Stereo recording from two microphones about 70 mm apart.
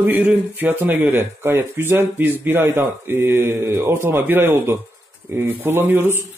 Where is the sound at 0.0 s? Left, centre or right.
Right.